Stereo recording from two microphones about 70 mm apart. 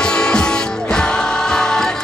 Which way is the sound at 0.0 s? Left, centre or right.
Centre.